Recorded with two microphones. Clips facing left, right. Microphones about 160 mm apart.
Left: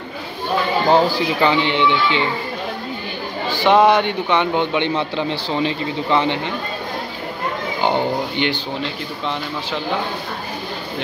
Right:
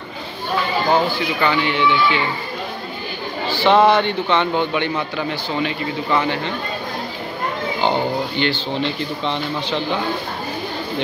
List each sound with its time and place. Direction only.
0.9 s a man's voice: 35° left (ahead or behind)
3.4 s a man's voice: 15° left (ahead or behind)
7.8 s speech: 15° left (ahead or behind)